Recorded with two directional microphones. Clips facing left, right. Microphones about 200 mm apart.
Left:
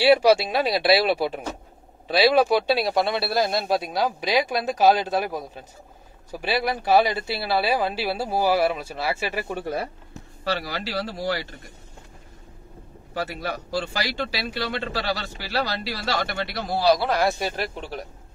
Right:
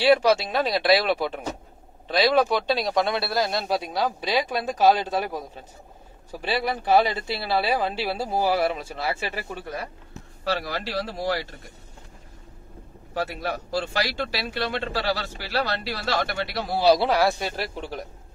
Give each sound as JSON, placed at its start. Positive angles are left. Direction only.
{"t": 0.0, "sound": "speech", "side_deg": 10}
{"t": 6.4, "sound": "speech", "side_deg": 10}
{"t": 10.4, "sound": "a man's voice", "side_deg": 0}
{"t": 13.1, "sound": "a man's voice", "side_deg": 0}
{"t": 16.8, "sound": "a man's voice", "side_deg": -30}
{"t": 17.1, "sound": "a man's voice", "side_deg": 0}